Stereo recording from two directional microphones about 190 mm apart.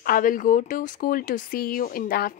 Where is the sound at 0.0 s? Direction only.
50° left (ahead or behind).